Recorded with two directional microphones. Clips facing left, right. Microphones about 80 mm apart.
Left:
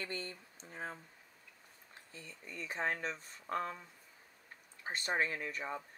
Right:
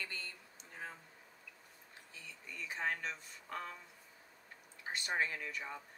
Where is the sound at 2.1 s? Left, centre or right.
Left.